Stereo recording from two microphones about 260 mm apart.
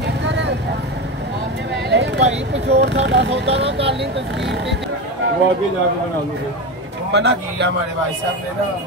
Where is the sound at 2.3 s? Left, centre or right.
Right.